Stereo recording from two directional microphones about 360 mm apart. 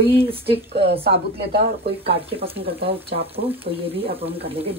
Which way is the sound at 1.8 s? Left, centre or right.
Centre.